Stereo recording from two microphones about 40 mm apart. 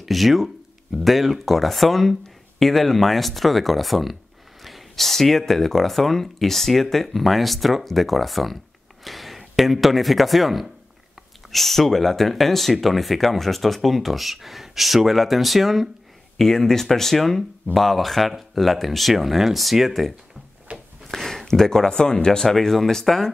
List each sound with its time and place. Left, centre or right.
0.0 s speech: centre
16.3 s speech: centre
20.7 s a sound: right
21.1 s speech: centre